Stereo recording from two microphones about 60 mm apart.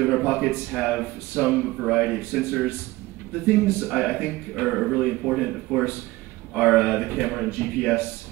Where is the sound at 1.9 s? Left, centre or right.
Centre.